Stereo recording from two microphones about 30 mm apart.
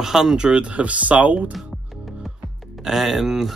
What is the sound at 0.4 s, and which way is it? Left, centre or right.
Speech, right.